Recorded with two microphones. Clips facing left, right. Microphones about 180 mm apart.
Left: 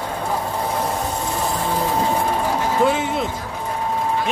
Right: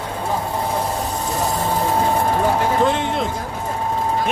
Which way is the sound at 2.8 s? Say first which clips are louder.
Even; 5° left (ahead or behind).